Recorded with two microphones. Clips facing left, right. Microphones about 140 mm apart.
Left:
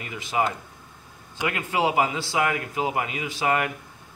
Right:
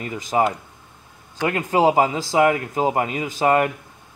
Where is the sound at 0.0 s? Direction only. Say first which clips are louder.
Right 5 dB; 40° right (ahead or behind).